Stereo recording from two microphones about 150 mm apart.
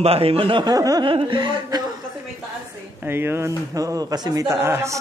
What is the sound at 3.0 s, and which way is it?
A man's voice, 15° right (ahead or behind).